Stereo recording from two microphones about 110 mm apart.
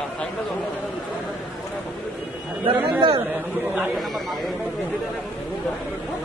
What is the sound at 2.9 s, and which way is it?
Speech, 50° right (ahead or behind).